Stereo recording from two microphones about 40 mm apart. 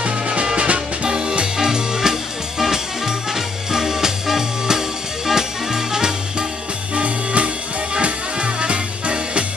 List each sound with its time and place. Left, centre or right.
0.0 s music: right; by 6.1 s centre
7.0 s music: right